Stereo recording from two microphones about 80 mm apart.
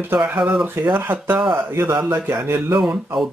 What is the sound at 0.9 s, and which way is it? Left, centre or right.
Speech, right.